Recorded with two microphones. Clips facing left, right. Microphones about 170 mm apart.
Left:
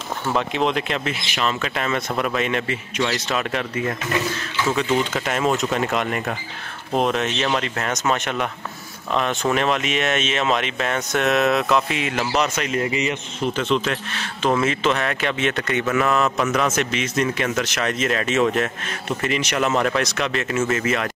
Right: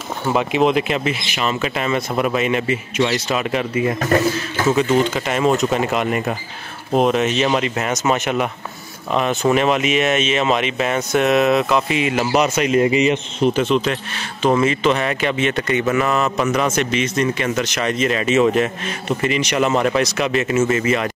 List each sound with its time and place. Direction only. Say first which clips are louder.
0.3 s speech: right 5 dB; 10° right (ahead or behind)
4.0 s speech: right 7 dB; 45° right (ahead or behind)
5.1 s speech: right 4 dB; centre (ahead or behind)